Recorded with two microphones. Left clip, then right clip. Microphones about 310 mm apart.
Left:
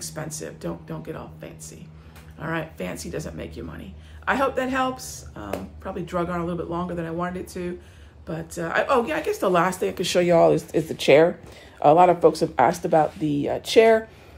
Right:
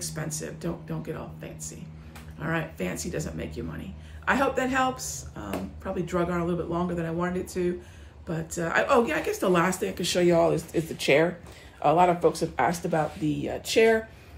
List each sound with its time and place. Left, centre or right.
0.0 s speech: centre; by 13.9 s left